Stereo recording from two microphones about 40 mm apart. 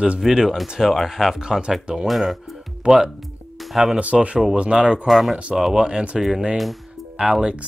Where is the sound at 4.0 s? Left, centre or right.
Right.